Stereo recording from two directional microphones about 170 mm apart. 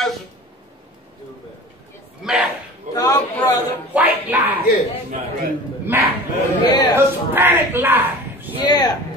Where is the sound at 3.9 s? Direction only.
10° right (ahead or behind).